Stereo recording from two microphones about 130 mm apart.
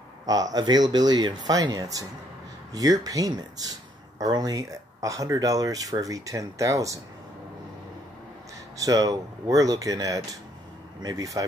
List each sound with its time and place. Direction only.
0.3 s speech: 30° right (ahead or behind)
8.7 s speech: 25° right (ahead or behind)